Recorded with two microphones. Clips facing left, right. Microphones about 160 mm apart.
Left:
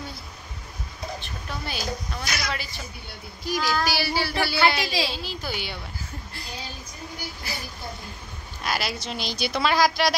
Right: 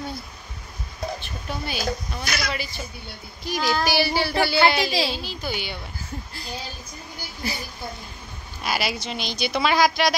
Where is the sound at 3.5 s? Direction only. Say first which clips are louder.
Right 2 dB; 25° right (ahead or behind).